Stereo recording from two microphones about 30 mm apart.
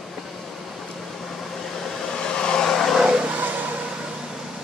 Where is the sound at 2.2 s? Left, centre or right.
Left.